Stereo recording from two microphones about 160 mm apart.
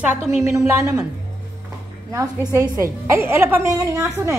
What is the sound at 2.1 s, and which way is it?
A woman's voice, 20° right (ahead or behind).